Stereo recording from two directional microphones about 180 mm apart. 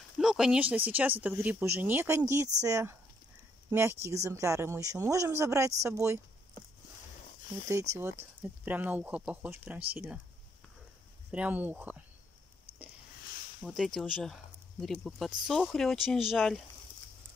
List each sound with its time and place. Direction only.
0.2 s speech: 5° right (ahead or behind)
8.0 s speech: 10° right (ahead or behind)
11.3 s speech: 10° right (ahead or behind)
13.6 s speech: centre (ahead or behind)